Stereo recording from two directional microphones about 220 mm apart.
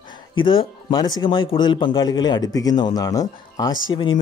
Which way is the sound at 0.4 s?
25° left (ahead or behind).